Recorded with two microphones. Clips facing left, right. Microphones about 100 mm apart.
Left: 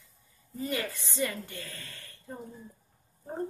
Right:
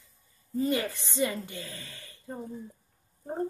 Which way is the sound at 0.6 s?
20° right (ahead or behind).